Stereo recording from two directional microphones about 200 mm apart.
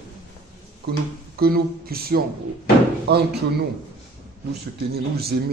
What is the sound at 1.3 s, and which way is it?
Speech, 50° right (ahead or behind).